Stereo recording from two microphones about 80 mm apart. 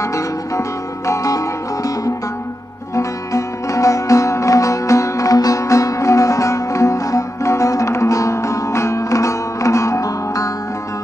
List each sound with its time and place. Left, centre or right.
0.0 s music: left